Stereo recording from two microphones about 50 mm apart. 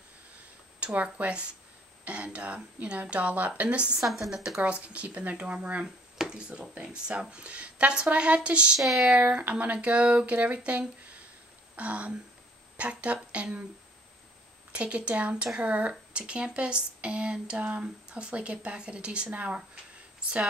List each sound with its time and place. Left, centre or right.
0.9 s speech: right
6.1 s a sound: centre
6.8 s speech: centre
8.7 s speech: centre
9.4 s speech: right
14.7 s speech: right